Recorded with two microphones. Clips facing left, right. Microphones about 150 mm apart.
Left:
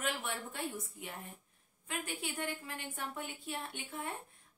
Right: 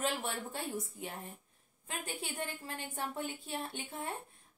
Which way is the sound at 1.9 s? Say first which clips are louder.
Left 1 dB; 35° right (ahead or behind).